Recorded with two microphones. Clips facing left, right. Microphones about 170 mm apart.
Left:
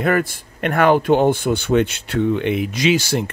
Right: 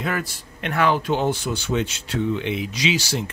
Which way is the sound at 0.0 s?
55° left (ahead or behind).